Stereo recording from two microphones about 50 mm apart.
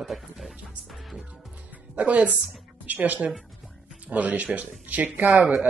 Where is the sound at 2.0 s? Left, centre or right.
Right.